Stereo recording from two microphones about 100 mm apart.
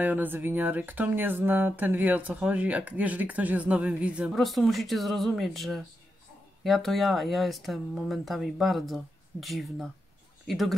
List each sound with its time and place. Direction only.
0.0 s speech: 15° right (ahead or behind)
4.4 s speech: centre (ahead or behind)